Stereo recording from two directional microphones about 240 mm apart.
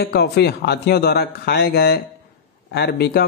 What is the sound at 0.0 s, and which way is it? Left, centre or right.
Speech, left.